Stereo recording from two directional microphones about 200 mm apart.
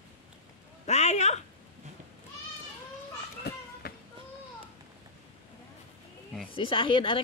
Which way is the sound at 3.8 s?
50° left (ahead or behind).